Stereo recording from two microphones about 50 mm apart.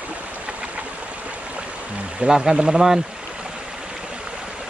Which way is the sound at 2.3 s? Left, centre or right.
Centre.